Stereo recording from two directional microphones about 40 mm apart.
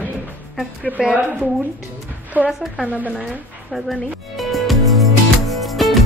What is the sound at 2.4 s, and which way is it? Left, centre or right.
Speech, right.